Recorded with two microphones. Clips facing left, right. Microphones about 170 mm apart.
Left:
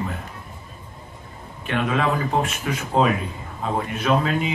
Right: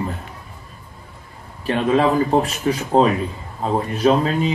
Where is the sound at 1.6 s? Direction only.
35° right (ahead or behind).